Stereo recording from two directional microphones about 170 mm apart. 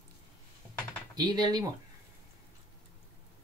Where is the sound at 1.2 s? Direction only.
25° right (ahead or behind).